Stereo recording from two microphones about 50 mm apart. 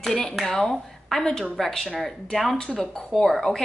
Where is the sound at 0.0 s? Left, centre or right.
Centre.